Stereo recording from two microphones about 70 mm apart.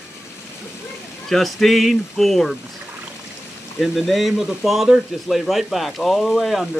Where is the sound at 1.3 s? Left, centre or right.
Centre.